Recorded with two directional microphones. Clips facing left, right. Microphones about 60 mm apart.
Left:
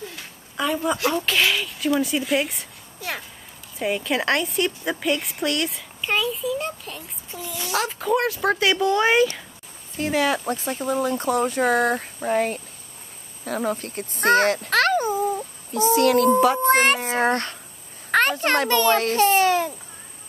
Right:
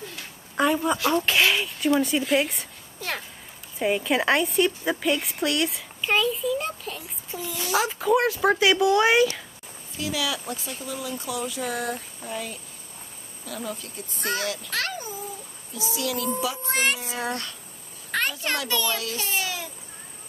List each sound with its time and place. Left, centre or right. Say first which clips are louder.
1.1 s speech: even; centre
9.9 s a child's voice: left 7 dB; left